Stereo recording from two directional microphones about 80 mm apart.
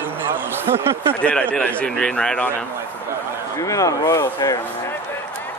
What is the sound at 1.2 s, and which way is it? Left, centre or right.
A man's voice, centre.